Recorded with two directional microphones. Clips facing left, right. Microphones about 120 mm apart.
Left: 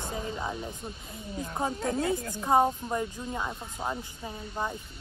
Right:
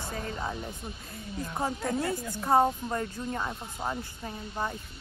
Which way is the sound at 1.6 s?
20° left (ahead or behind).